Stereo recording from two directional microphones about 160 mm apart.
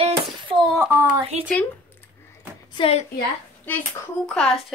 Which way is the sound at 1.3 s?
45° right (ahead or behind).